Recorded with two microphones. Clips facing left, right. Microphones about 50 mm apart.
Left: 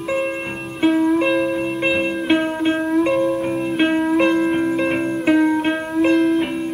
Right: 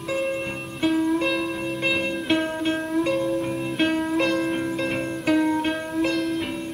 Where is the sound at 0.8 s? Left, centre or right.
Left.